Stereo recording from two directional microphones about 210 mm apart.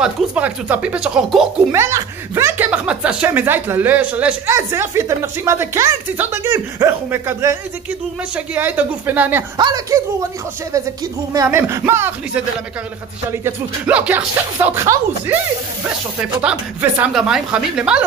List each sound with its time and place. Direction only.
0.0 s a woman's voice: 5° right (ahead or behind)
1.7 s speech: 15° right (ahead or behind)
8.5 s speech: 10° right (ahead or behind)
11.3 s a woman's voice: 10° right (ahead or behind)